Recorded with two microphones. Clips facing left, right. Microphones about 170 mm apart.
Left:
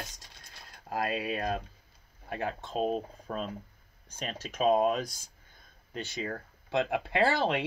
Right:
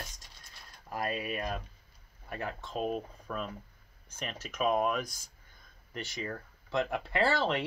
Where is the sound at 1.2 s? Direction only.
30° left (ahead or behind).